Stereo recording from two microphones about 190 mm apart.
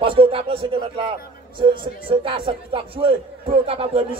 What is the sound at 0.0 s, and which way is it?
A man's voice, 30° right (ahead or behind).